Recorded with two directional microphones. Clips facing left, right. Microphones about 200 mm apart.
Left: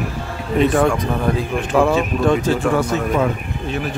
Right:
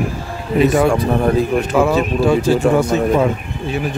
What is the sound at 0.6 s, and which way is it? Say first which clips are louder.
A man's voice: right 2 dB; 5° right (ahead or behind).